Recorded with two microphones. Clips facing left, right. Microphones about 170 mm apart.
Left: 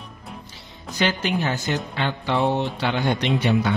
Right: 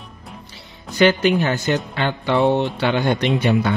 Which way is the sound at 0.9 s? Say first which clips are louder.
Right 8 dB; 65° right (ahead or behind).